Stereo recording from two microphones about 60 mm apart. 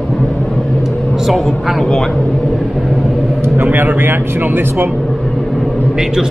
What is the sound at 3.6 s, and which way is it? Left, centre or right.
Speech, right.